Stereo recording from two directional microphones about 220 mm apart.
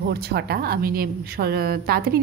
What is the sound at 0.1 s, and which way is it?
A woman's voice, 45° right (ahead or behind).